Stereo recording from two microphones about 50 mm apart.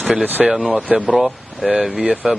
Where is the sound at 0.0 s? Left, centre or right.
Right.